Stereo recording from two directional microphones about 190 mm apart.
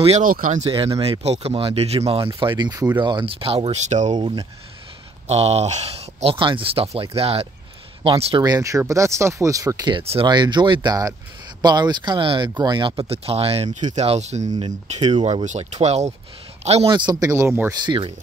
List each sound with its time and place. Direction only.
0.2 s speech: 45° right (ahead or behind)
4.1 s speech: 20° right (ahead or behind)
5.3 s speech: 35° right (ahead or behind)